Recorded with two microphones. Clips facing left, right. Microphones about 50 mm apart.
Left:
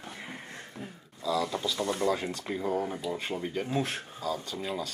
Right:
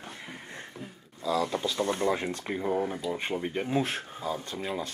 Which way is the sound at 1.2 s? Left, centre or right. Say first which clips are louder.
Right 1 dB; right.